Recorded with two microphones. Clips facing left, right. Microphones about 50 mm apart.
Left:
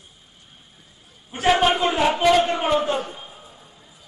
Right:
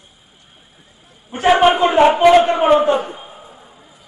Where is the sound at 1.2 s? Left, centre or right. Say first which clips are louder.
Right 6 dB; centre.